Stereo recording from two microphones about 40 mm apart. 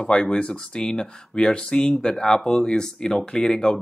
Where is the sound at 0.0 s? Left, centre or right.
Left.